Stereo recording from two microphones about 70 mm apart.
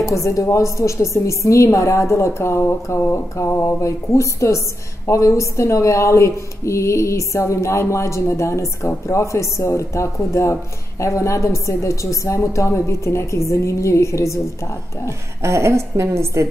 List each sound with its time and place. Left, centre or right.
0.1 s a woman's voice: left
15.0 s speech: right